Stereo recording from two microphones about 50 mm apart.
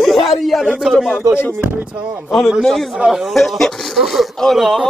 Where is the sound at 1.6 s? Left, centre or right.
Right.